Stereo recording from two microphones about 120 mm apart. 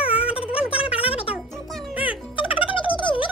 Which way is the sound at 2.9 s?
45° left (ahead or behind).